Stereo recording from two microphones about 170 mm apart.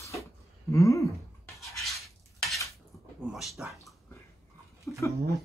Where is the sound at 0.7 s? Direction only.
20° left (ahead or behind).